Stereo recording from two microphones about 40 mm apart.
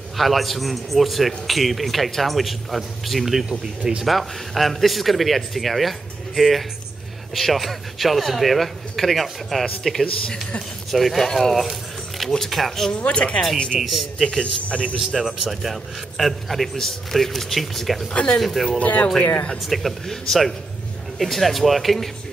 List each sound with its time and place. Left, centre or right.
0.2 s a man's voice: centre
3.4 s speech: right
4.0 s a man's voice: centre
12.9 s speech: left
13.7 s a man's voice: centre
14.6 s a man's voice: left
15.0 s a man's voice: centre
18.1 s speech: left
18.4 s a man's voice: centre
18.7 s a man's voice: left
19.6 s a man's voice: centre